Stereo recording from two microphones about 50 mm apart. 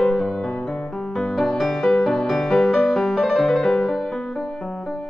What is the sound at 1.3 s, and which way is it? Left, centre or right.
Music, centre.